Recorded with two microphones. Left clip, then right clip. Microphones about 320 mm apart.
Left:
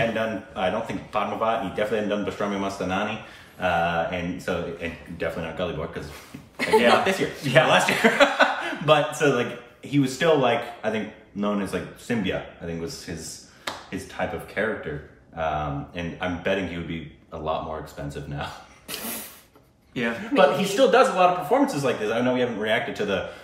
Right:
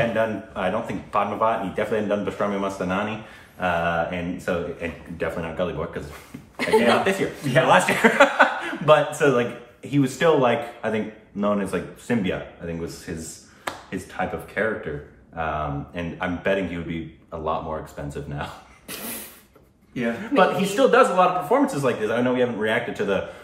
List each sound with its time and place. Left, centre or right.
0.1 s a man's voice: centre
18.1 s speech: centre
20.3 s a man's voice: centre